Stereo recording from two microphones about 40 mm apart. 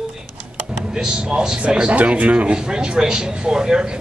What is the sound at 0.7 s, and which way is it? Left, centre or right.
Speech, centre.